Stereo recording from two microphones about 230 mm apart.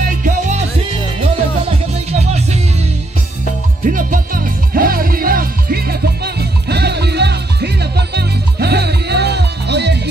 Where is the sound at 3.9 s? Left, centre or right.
Right.